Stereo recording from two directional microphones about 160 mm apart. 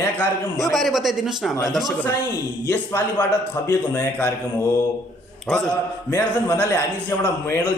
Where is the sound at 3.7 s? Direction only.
20° left (ahead or behind).